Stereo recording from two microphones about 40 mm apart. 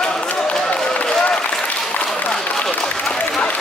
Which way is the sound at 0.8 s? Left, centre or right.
Centre.